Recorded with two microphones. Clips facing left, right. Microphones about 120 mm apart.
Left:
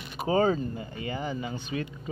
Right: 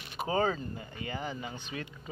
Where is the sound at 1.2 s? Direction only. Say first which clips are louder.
Left 5 dB; 5° left (ahead or behind).